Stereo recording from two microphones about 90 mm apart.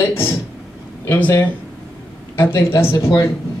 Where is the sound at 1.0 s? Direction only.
25° left (ahead or behind).